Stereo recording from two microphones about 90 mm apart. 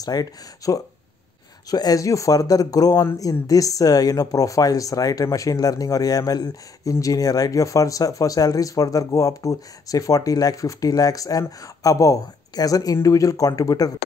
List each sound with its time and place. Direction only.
0.0 s speech: 45° left (ahead or behind)